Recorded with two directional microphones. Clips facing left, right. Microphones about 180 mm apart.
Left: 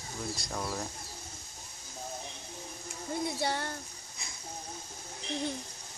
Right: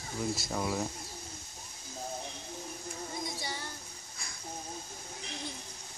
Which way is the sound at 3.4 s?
60° left (ahead or behind).